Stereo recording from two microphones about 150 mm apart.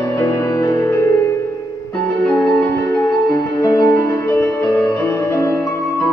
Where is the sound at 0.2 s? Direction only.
20° left (ahead or behind).